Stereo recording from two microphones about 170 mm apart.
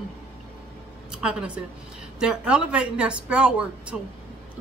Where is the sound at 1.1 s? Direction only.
5° right (ahead or behind).